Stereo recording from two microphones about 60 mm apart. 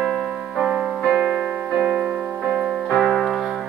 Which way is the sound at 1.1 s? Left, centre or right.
Centre.